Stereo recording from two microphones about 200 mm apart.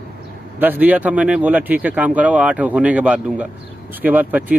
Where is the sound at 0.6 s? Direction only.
10° right (ahead or behind).